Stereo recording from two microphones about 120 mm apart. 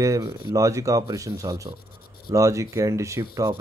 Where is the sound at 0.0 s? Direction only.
30° right (ahead or behind).